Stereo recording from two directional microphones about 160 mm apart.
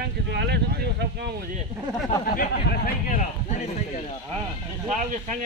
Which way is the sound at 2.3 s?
55° left (ahead or behind).